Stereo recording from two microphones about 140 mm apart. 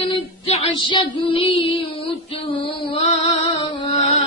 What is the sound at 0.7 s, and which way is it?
Child singing, 35° left (ahead or behind).